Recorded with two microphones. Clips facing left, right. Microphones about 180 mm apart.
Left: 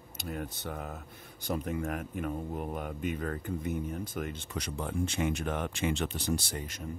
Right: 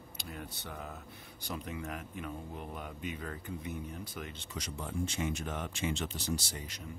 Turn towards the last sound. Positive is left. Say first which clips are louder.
# left 4 dB
turn(degrees=50)  # may be behind; listen again after turning